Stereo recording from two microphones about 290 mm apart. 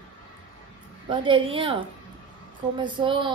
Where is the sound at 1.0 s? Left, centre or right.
Centre.